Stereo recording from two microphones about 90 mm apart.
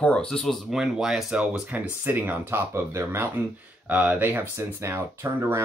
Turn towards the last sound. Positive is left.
turn(degrees=-30)  # may be behind; listen again after turning